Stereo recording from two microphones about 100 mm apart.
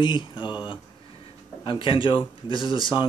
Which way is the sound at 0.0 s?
50° left (ahead or behind).